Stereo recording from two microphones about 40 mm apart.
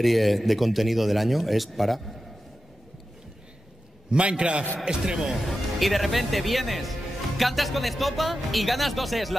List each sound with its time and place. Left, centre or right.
0.0 s speech: centre
4.1 s a man's voice: right
5.4 s speech: centre